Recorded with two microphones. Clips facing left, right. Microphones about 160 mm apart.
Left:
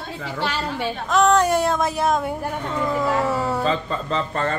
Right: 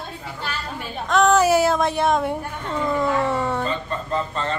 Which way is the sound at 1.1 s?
Centre (ahead or behind).